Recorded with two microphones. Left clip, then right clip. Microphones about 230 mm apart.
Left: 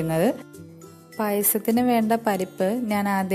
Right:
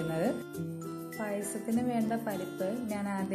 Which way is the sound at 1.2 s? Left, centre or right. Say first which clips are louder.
Left 13 dB; left.